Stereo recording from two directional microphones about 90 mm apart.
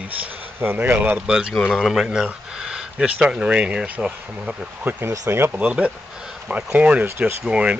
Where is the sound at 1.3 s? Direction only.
10° right (ahead or behind).